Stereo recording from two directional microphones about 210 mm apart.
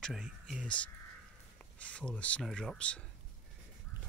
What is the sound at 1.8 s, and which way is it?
Speech, 5° left (ahead or behind).